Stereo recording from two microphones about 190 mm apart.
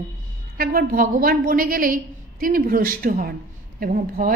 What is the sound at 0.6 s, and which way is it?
A woman's voice, 50° right (ahead or behind).